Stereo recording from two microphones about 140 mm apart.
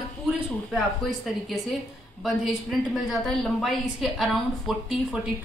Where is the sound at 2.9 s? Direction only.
Centre (ahead or behind).